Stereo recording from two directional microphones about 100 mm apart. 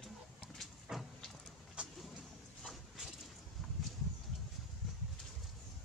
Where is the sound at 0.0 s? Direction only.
5° left (ahead or behind).